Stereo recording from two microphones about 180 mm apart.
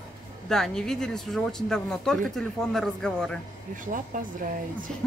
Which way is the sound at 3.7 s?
45° right (ahead or behind).